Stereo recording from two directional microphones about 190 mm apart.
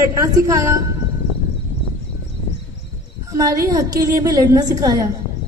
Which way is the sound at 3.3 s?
15° right (ahead or behind).